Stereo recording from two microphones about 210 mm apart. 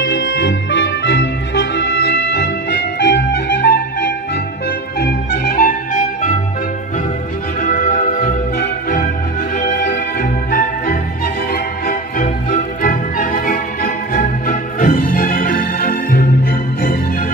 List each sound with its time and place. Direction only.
0.0 s music: 55° left (ahead or behind); by 6.3 s 40° left (ahead or behind)
7.6 s music: 40° left (ahead or behind)